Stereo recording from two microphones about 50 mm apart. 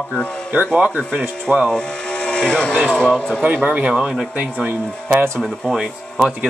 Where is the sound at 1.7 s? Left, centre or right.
Centre.